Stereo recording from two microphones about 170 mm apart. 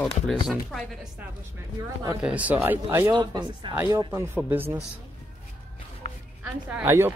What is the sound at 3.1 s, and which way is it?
A woman's voice, 25° right (ahead or behind).